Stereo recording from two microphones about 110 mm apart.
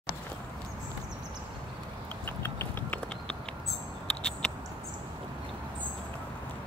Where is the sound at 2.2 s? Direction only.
20° left (ahead or behind).